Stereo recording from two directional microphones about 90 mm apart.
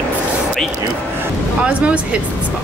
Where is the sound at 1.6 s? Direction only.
15° right (ahead or behind).